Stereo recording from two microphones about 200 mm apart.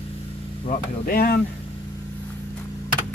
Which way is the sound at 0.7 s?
50° left (ahead or behind).